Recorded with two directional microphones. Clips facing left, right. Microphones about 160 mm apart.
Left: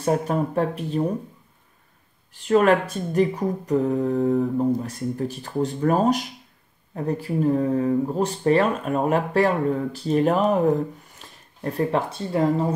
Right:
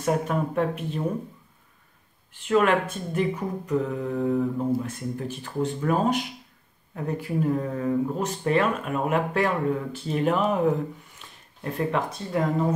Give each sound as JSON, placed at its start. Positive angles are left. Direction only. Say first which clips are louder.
{"t": 0.0, "sound": "speech", "louder": "left 3 dB", "side_deg": 35}
{"t": 2.4, "sound": "speech", "louder": "left 3 dB", "side_deg": 40}